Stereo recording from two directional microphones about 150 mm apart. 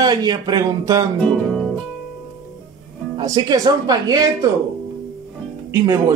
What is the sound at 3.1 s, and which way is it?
Speech, 25° right (ahead or behind).